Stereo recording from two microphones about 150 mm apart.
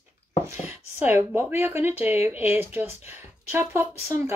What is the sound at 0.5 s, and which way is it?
Speech, 15° right (ahead or behind).